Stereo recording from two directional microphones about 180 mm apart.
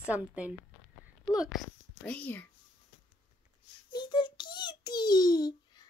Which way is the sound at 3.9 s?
25° left (ahead or behind).